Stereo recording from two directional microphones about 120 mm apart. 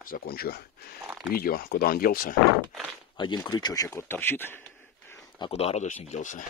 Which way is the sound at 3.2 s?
40° left (ahead or behind).